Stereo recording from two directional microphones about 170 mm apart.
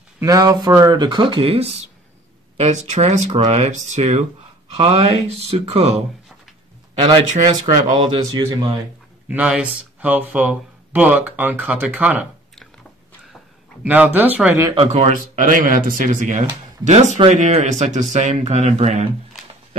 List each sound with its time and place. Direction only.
0.2 s speech: 20° right (ahead or behind)
9.3 s speech: 5° right (ahead or behind)
13.8 s speech: 10° right (ahead or behind)
14.9 s speech: 40° right (ahead or behind)